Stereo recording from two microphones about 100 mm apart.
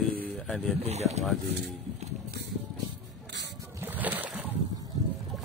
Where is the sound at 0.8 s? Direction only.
90° right.